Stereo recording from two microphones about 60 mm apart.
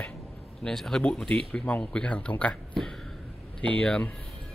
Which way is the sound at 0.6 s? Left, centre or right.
Centre.